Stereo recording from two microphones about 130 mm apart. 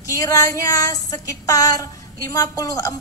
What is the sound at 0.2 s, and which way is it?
A woman's voice, 25° left (ahead or behind).